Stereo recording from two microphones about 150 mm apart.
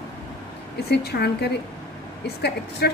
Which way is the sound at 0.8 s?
90° left.